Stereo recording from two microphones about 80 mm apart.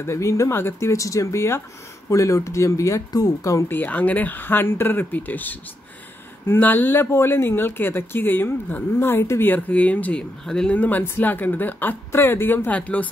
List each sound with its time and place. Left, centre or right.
0.0 s speech: left
3.6 s speech: left
9.5 s speech: centre
10.4 s speech: centre